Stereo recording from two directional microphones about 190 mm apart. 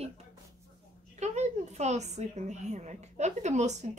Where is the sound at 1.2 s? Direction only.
35° right (ahead or behind).